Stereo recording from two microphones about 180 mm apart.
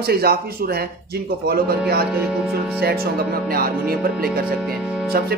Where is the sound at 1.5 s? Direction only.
60° right (ahead or behind).